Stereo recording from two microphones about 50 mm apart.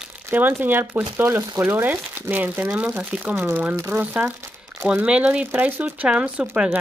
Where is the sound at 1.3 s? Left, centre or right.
Right.